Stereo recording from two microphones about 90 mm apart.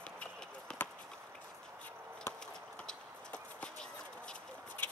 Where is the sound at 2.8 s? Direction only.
15° left (ahead or behind).